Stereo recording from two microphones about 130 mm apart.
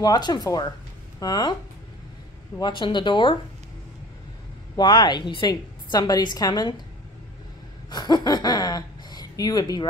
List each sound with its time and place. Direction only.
0.0 s a woman's voice: 30° left (ahead or behind)
2.6 s a woman's voice: 35° left (ahead or behind)
4.7 s a woman's voice: 35° left (ahead or behind)
7.9 s speech: 30° left (ahead or behind)